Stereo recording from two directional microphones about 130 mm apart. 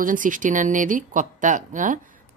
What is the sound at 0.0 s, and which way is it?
Speech, 90° right.